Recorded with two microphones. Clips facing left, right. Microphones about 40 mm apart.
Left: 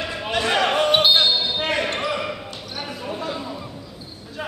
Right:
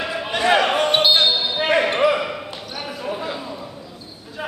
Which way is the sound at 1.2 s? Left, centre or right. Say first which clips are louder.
Right 2 dB; centre.